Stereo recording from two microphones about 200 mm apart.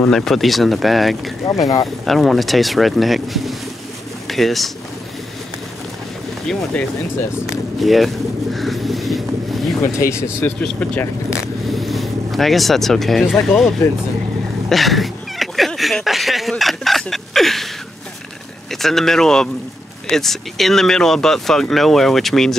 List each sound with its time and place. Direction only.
0.0 s speech: centre (ahead or behind)
1.4 s speech: 15° left (ahead or behind)
2.0 s speech: centre (ahead or behind)
6.4 s speech: 5° left (ahead or behind)
8.5 s vehicle: centre (ahead or behind)
9.8 s speech: 15° left (ahead or behind)
11.7 s speech: centre (ahead or behind)
14.7 s cat: centre (ahead or behind)
18.7 s speech: centre (ahead or behind)